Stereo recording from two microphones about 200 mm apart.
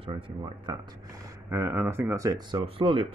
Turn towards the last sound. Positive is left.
turn(degrees=-25)  # may be behind; listen again after turning